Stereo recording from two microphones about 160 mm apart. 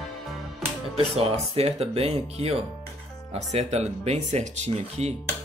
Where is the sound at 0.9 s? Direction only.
35° right (ahead or behind).